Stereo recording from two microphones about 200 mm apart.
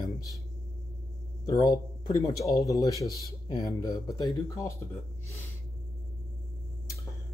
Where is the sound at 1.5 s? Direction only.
20° left (ahead or behind).